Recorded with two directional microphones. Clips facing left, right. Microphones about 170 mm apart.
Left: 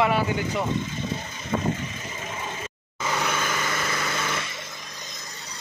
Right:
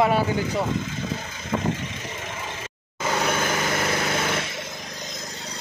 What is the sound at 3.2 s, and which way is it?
Vehicle, 45° right (ahead or behind).